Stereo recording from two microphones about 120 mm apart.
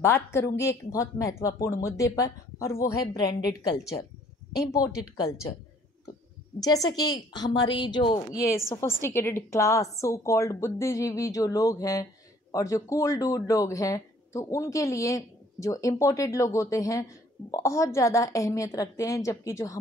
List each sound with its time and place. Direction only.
0.0 s a woman's voice: 20° left (ahead or behind)
6.6 s a woman's voice: 30° left (ahead or behind)
8.3 s a woman's voice: 25° left (ahead or behind)